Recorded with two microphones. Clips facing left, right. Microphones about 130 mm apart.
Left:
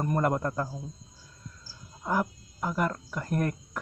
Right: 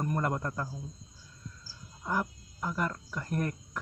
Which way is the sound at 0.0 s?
25° left (ahead or behind).